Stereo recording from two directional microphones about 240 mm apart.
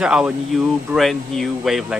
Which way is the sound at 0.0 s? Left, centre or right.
Centre.